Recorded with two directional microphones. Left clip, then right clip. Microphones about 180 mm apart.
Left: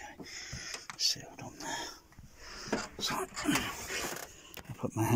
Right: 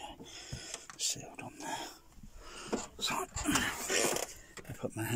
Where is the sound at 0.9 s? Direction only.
15° right (ahead or behind).